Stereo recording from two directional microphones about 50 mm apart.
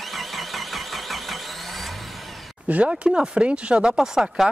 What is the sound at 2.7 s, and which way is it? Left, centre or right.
Speech, right.